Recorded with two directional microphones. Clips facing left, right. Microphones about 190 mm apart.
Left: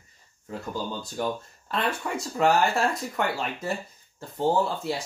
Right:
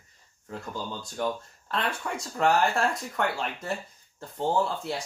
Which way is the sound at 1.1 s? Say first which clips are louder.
Right 1 dB; 5° left (ahead or behind).